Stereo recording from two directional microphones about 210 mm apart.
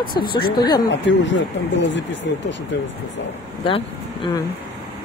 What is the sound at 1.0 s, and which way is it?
Speech, 60° left (ahead or behind).